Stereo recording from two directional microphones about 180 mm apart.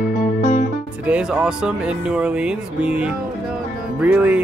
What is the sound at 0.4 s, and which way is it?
Music, 40° left (ahead or behind).